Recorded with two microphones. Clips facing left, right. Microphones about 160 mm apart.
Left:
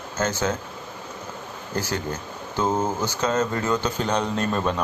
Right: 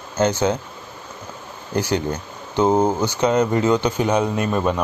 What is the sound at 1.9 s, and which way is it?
A man's voice, 20° right (ahead or behind).